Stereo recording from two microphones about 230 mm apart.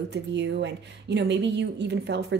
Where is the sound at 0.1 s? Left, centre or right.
Right.